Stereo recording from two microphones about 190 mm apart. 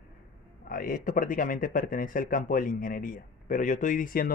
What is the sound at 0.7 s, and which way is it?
Speech, 45° left (ahead or behind).